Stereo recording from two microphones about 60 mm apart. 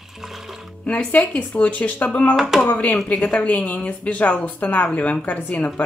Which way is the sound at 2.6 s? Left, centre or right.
Left.